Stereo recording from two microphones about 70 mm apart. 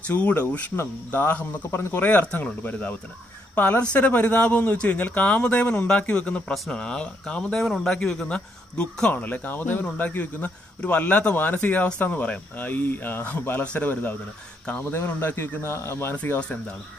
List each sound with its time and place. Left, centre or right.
0.0 s speech: left
2.0 s speech: left
9.2 s speech: left
16.2 s speech: centre